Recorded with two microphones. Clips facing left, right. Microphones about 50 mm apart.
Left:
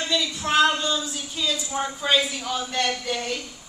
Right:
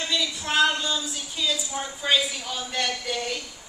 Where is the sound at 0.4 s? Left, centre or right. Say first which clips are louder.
Left 3 dB; centre.